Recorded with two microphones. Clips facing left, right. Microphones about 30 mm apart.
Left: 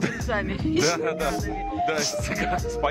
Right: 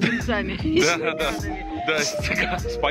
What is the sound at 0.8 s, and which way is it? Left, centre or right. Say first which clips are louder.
Speech: right 4 dB; centre.